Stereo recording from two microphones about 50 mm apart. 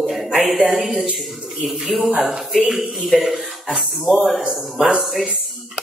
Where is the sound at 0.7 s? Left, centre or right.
Centre.